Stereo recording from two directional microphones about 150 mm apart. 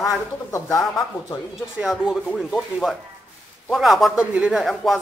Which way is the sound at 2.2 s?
5° left (ahead or behind).